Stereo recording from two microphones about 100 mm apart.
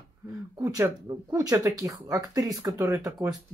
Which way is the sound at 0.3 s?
35° right (ahead or behind).